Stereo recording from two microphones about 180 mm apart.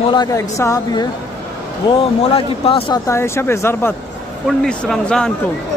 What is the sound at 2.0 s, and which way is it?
Speech, 30° left (ahead or behind).